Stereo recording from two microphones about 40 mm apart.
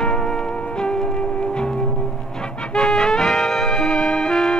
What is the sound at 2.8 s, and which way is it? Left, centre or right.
Music, centre.